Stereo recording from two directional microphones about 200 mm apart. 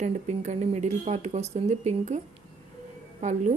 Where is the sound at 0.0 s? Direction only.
35° right (ahead or behind).